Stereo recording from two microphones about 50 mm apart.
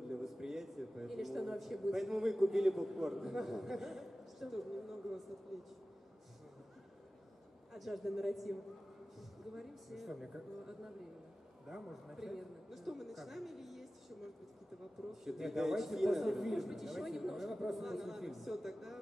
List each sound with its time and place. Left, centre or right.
0.1 s a man's voice: centre
7.7 s a man's voice: centre
9.6 s a man's voice: centre
15.2 s a man's voice: centre